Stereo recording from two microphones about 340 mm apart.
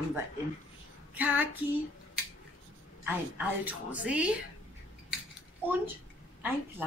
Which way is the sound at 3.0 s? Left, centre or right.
Centre.